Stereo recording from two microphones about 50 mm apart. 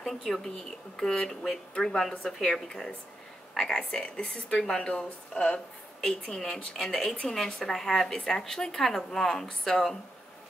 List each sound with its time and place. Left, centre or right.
0.0 s a woman's voice: centre